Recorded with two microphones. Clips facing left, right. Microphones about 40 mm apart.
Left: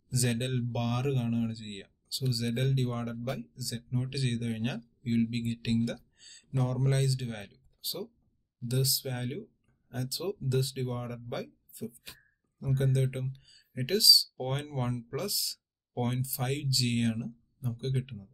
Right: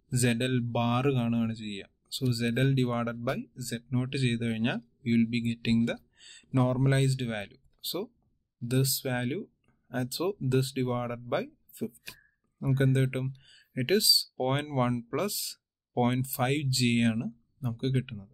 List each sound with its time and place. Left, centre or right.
0.1 s speech: right
14.5 s speech: right